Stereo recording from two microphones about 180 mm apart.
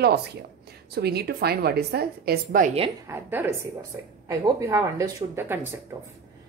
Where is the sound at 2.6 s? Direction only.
35° right (ahead or behind).